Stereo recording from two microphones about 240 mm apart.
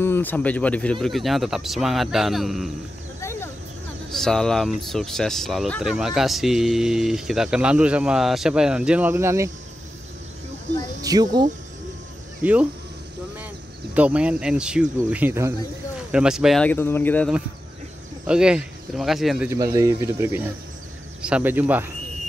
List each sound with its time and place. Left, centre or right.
0.0 s speech: centre
3.2 s a sound: centre
4.1 s speech: centre
11.0 s speech: centre
13.9 s speech: centre
18.2 s speech: centre